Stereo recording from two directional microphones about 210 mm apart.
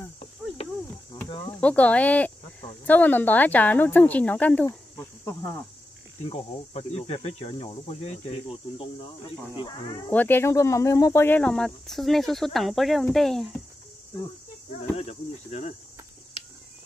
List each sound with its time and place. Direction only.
0.6 s cricket: 30° left (ahead or behind)
1.6 s speech: 5° left (ahead or behind)
6.2 s speech: 30° left (ahead or behind)
9.6 s speech: 20° left (ahead or behind)
10.1 s speech: 10° left (ahead or behind)
14.7 s speech: 30° left (ahead or behind)